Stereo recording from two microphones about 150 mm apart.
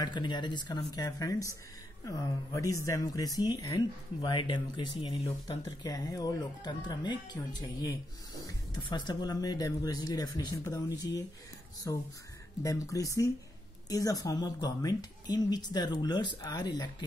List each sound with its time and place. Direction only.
0.0 s speech: 30° left (ahead or behind)